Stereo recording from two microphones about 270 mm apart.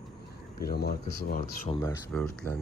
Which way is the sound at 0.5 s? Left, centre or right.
Left.